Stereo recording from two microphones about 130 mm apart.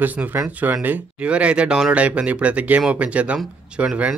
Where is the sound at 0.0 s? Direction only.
15° right (ahead or behind).